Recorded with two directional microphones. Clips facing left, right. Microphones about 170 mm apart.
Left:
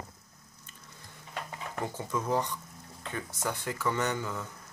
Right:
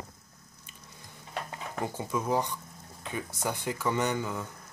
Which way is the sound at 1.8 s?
10° right (ahead or behind).